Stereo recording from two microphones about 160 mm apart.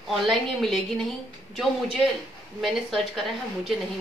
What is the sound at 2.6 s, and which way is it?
A woman's voice, centre (ahead or behind).